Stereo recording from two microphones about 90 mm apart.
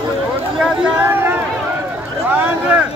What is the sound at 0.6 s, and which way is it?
Speech, 10° right (ahead or behind).